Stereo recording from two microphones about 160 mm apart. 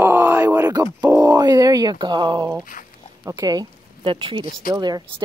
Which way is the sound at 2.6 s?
55° left (ahead or behind).